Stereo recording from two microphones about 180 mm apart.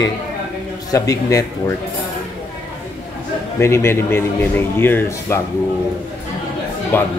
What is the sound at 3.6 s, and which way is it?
A man's voice, 15° left (ahead or behind).